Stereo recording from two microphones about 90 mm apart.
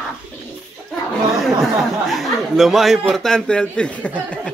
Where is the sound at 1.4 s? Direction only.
Centre (ahead or behind).